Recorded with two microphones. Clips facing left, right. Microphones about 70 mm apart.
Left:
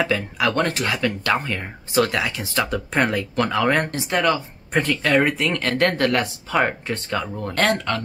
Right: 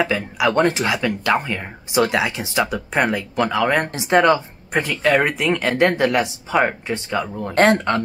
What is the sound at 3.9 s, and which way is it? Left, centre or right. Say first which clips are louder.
Speech: right 5 dB; right.